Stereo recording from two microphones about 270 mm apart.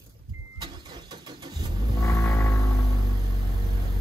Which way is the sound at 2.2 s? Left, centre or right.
Centre.